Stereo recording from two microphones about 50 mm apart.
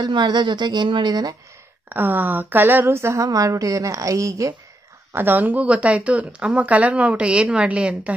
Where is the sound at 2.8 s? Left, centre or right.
Right.